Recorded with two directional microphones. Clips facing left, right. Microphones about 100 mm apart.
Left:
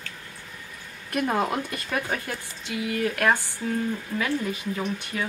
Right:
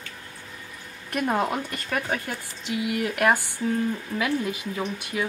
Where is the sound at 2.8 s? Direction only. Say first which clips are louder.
Right 1 dB; 15° right (ahead or behind).